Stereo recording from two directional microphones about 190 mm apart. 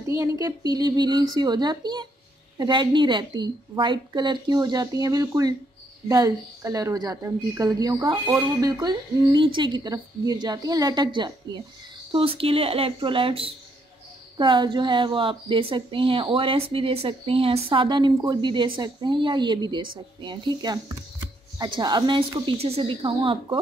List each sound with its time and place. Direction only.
0.0 s a woman's voice: 15° right (ahead or behind)